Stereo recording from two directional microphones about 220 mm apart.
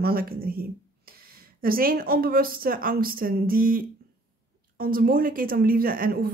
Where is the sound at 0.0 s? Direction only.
45° right (ahead or behind).